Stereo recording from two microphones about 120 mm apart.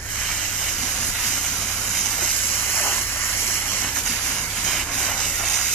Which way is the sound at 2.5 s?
5° right (ahead or behind).